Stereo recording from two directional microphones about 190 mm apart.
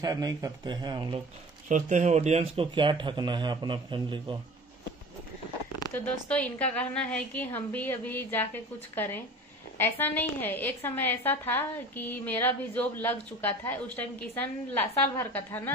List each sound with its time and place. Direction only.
0.0 s speech: 20° right (ahead or behind)
1.7 s speech: 40° right (ahead or behind)
5.9 s a woman's voice: 5° left (ahead or behind)